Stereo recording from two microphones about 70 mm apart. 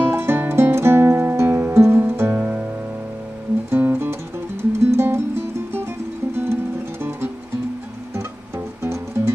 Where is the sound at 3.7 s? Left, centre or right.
Right.